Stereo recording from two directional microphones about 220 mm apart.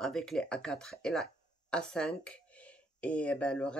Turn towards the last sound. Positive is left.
turn(degrees=5)  # may be behind; listen again after turning